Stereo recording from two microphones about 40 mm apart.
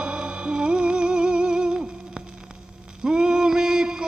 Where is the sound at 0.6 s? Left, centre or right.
Right.